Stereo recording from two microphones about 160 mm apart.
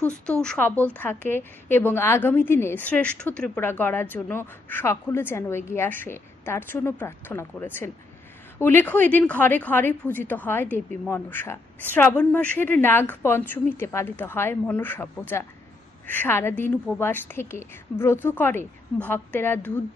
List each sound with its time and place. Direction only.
0.0 s a woman's voice: 5° left (ahead or behind)